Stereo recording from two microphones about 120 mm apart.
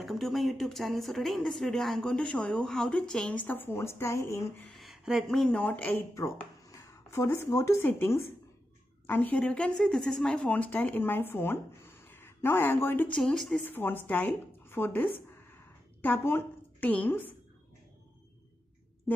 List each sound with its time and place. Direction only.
0.0 s speech: centre (ahead or behind); by 4.6 s 20° left (ahead or behind)
4.6 s speech: centre (ahead or behind)
6.1 s a woman's voice: 25° left (ahead or behind)
13.2 s speech: 5° left (ahead or behind)
13.7 s speech: 15° left (ahead or behind)